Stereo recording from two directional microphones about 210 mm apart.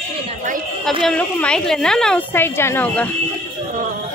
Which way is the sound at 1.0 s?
5° left (ahead or behind).